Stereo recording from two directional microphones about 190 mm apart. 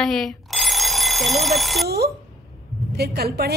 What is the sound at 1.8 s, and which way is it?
A woman's voice, 55° right (ahead or behind).